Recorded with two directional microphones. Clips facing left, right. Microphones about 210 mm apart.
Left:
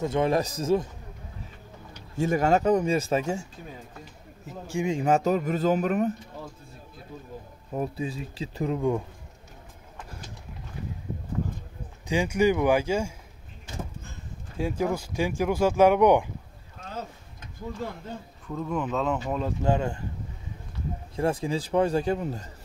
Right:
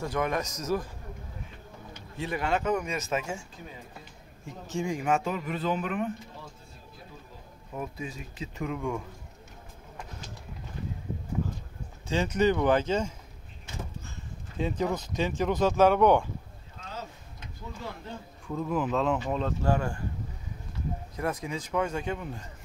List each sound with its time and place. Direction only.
0.0 s a man's voice: 25° left (ahead or behind)
2.0 s speech: 45° left (ahead or behind)
4.5 s speech: 10° left (ahead or behind)
5.0 s speech: 40° left (ahead or behind)
7.7 s speech: 35° left (ahead or behind)
12.1 s speech: 10° left (ahead or behind)
14.6 s speech: 10° left (ahead or behind)
18.5 s speech: 5° right (ahead or behind)
19.6 s a man's voice: 20° left (ahead or behind)
21.2 s speech: 30° left (ahead or behind)